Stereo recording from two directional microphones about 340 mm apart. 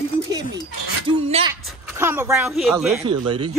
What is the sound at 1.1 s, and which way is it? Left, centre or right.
Speech, centre.